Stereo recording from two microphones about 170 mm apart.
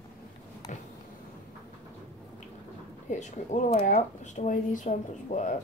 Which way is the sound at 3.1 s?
45° left (ahead or behind).